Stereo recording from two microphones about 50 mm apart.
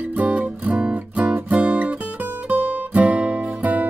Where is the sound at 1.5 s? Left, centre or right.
Right.